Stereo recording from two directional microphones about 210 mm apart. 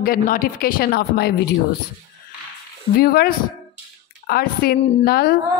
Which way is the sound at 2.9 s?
45° left (ahead or behind).